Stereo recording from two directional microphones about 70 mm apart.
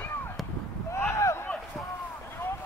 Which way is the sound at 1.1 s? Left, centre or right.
Left.